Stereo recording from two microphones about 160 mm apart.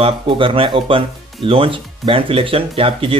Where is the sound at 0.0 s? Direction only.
35° right (ahead or behind).